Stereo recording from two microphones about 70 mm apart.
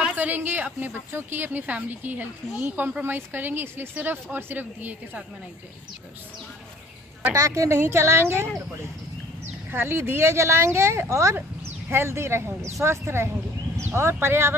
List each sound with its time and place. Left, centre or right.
0.0 s a woman's voice: right
3.0 s a woman's voice: right
7.3 s a woman's voice: right
9.7 s a woman's voice: right